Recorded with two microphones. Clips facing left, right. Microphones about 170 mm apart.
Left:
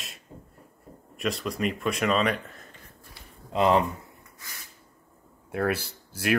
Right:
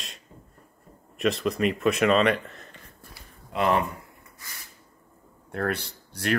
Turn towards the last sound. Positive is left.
turn(degrees=5)  # may be behind; listen again after turning